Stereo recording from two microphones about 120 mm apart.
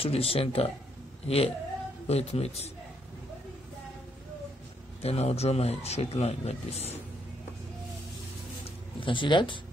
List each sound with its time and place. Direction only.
0.0 s speech: 55° left (ahead or behind)
5.0 s speech: 60° left (ahead or behind)
8.6 s a sound: 45° left (ahead or behind)